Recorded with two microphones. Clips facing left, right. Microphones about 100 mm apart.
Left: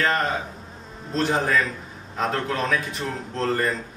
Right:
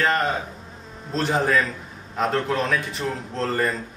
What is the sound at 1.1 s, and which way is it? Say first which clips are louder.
A man's voice: right 1 dB; centre (ahead or behind).